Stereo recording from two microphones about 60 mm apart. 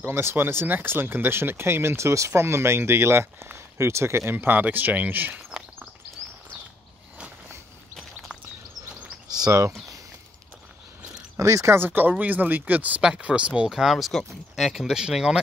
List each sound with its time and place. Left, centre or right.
0.0 s speech: right
9.3 s speech: right
11.3 s speech: right
11.8 s speech: right
13.7 s speech: centre